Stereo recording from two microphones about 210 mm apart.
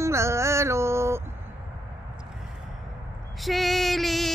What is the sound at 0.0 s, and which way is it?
Mantra, 15° right (ahead or behind).